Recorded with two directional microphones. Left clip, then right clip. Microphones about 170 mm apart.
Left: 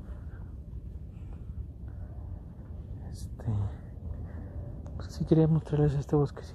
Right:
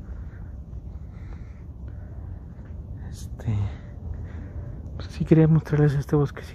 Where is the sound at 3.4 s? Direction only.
10° right (ahead or behind).